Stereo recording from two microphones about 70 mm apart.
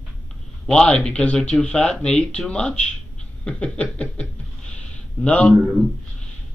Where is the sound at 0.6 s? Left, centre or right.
Centre.